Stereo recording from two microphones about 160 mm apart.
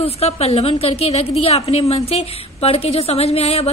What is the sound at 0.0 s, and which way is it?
A woman's voice, 40° left (ahead or behind).